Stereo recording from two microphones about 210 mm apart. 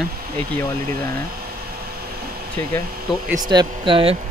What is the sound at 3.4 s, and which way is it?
Speech, 20° right (ahead or behind).